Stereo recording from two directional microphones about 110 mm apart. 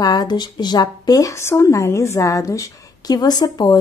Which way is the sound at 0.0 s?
35° left (ahead or behind).